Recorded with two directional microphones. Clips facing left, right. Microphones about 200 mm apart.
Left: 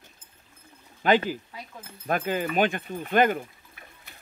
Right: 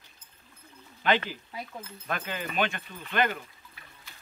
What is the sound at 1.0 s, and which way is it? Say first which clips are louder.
Speech: left 5 dB; 45° left (ahead or behind).